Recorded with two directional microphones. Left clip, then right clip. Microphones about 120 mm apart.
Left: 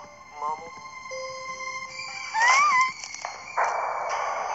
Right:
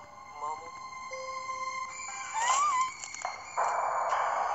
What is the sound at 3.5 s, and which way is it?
Sonar, 40° left (ahead or behind).